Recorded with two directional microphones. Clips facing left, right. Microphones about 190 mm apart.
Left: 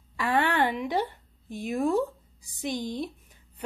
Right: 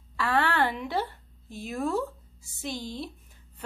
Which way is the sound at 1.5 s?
15° left (ahead or behind).